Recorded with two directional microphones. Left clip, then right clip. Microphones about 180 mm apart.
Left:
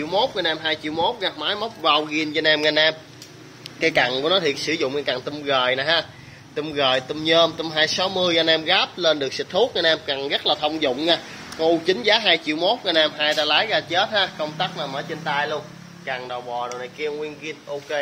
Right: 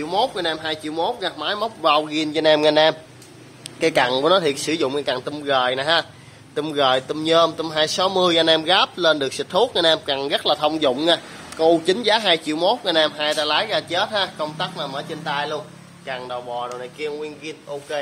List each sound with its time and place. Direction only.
0.0 s a man's voice: 20° right (ahead or behind)
14.8 s speech: 5° right (ahead or behind)